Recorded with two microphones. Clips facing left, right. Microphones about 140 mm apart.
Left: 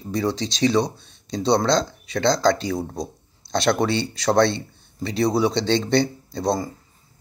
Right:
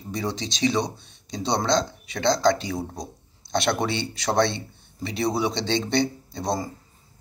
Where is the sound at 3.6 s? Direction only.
25° right (ahead or behind).